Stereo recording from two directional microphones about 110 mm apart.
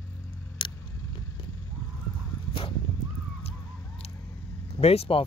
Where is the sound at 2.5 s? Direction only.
55° left (ahead or behind).